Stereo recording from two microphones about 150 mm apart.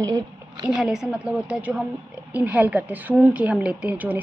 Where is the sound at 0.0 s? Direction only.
25° right (ahead or behind).